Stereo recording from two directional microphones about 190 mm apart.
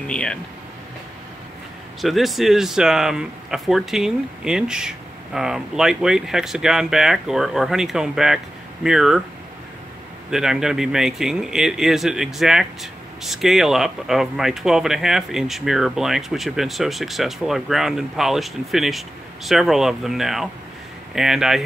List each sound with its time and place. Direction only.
0.0 s speech: 5° left (ahead or behind)
2.0 s speech: centre (ahead or behind)
10.3 s speech: 5° right (ahead or behind)